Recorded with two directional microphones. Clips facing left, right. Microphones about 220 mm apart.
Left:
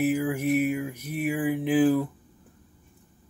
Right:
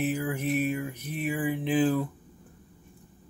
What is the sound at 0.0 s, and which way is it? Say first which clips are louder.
Speech: left 4 dB; 10° left (ahead or behind).